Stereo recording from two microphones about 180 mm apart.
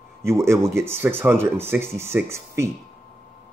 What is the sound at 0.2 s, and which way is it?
Speech, 15° right (ahead or behind).